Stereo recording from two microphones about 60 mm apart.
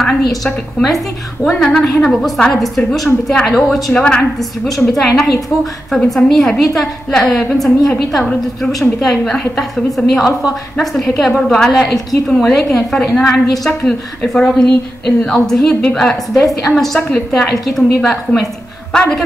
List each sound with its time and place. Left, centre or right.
0.0 s a woman's voice: centre
3.9 s a woman's voice: left
4.4 s a woman's voice: centre